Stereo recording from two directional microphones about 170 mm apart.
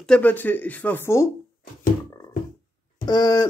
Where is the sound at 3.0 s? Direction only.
25° left (ahead or behind).